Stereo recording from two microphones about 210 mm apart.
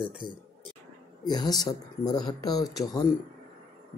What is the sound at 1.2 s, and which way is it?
Speech, 20° left (ahead or behind).